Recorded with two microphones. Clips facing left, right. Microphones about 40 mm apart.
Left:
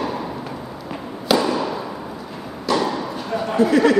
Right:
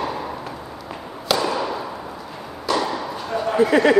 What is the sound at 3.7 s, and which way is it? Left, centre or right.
Speech, centre.